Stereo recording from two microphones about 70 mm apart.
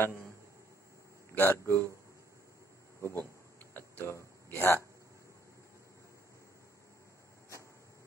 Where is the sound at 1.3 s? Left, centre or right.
Left.